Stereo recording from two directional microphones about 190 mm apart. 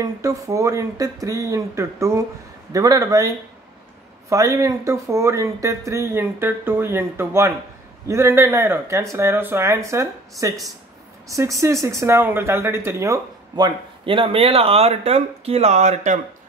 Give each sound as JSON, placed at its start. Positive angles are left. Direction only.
{"t": 0.0, "sound": "speech", "side_deg": -15}